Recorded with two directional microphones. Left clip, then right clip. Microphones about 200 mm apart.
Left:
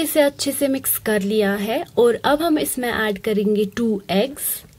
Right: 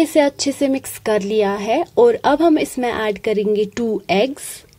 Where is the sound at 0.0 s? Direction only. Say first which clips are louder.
Right 3 dB; 20° right (ahead or behind).